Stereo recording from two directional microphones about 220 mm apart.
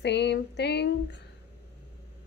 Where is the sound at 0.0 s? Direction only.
50° left (ahead or behind).